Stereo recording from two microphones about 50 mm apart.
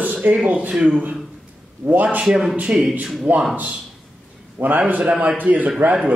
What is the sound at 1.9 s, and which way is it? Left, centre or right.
Speech, right.